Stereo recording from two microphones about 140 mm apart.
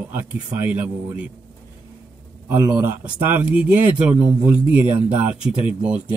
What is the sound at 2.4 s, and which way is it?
A man's voice, 20° right (ahead or behind).